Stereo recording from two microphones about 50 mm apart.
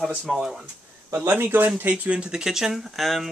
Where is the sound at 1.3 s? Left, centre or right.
Right.